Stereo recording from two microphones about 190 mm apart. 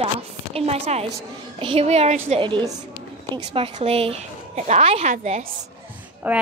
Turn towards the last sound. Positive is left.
turn(degrees=-10)  # may be behind; listen again after turning